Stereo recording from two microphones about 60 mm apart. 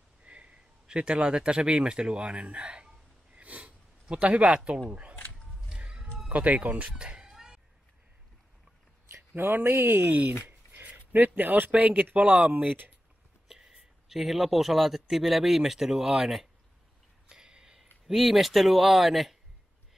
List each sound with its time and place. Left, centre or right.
0.2 s speech: right
3.3 s snort: right
5.8 s a sound: centre
6.3 s speech: right
9.1 s speech: right
13.5 s speech: centre
17.3 s a sound: centre
18.0 s speech: centre